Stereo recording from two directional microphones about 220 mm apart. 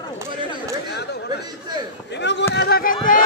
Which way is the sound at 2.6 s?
45° left (ahead or behind).